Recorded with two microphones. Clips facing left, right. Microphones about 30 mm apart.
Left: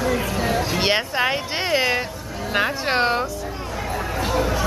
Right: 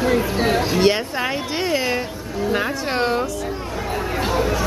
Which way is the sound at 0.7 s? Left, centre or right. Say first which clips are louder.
Right 2 dB; centre.